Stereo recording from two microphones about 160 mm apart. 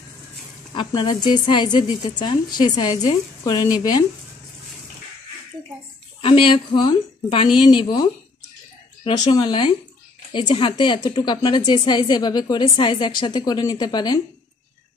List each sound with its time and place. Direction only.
0.7 s speech: 30° left (ahead or behind)
6.2 s a woman's voice: 30° left (ahead or behind)